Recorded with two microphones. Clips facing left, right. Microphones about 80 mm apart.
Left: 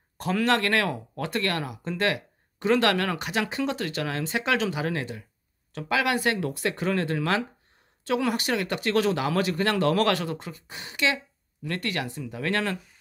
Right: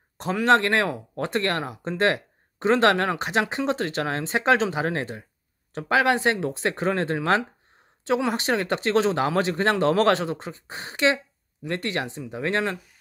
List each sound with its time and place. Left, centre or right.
0.2 s speech: right